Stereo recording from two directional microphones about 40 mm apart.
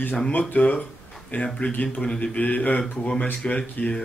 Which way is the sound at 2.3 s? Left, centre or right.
Left.